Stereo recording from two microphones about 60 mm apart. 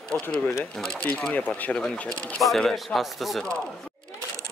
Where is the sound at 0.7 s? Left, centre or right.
Centre.